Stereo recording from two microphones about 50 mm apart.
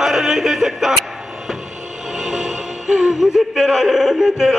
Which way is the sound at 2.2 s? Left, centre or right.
Centre.